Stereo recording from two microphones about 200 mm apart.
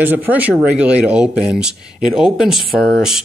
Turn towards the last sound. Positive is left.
turn(degrees=0)  # may be behind; listen again after turning